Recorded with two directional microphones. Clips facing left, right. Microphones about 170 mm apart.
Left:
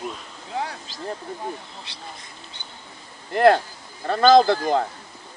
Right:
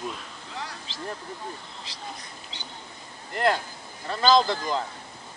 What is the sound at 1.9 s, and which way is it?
Speech, 60° left (ahead or behind).